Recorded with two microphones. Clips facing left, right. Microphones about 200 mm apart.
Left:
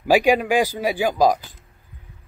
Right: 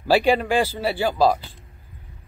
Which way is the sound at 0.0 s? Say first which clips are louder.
Left 2 dB; 10° left (ahead or behind).